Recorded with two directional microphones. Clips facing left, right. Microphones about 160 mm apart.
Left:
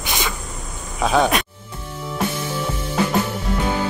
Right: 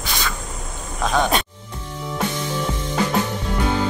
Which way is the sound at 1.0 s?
5° left (ahead or behind).